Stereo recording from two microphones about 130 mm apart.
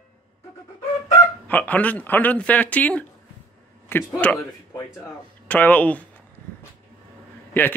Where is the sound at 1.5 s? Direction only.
10° left (ahead or behind).